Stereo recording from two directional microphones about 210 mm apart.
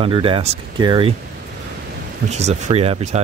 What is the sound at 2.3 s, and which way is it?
Speech, 30° right (ahead or behind).